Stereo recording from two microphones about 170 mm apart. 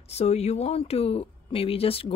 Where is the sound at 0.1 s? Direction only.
40° left (ahead or behind).